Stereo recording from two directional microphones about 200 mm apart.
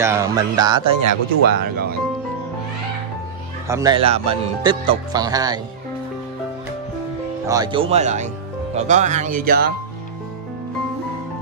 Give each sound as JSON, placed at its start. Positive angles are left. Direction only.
{"t": 0.0, "sound": "speech", "side_deg": -15}
{"t": 1.5, "sound": "speech", "side_deg": -50}
{"t": 3.6, "sound": "speech", "side_deg": -15}
{"t": 4.0, "sound": "speech", "side_deg": -30}
{"t": 7.4, "sound": "speech", "side_deg": -20}